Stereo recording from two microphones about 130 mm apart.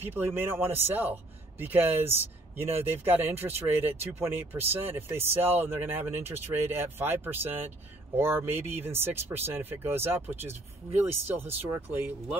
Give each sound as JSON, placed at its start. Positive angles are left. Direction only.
{"t": 0.0, "sound": "a man's voice", "side_deg": -15}